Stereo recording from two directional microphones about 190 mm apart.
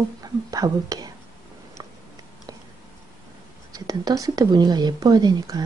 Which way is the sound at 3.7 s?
20° right (ahead or behind).